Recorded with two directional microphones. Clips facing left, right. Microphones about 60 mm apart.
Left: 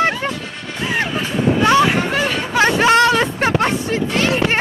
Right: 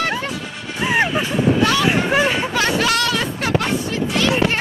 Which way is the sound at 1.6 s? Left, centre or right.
Left.